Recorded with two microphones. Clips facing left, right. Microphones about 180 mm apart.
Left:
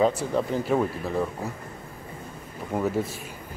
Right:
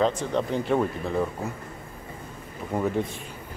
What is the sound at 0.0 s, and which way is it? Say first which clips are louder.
Speech: left 1 dB; 5° left (ahead or behind).